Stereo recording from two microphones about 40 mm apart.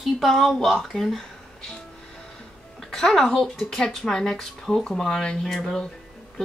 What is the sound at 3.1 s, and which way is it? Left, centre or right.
Speech, centre.